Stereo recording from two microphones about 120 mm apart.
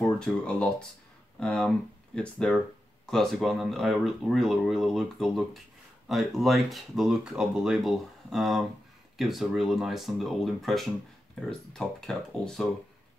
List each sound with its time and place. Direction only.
0.0 s speech: 5° left (ahead or behind)